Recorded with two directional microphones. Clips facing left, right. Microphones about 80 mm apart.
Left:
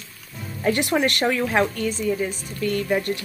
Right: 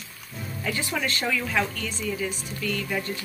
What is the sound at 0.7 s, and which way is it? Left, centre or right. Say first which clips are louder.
Speech: left 8 dB; left.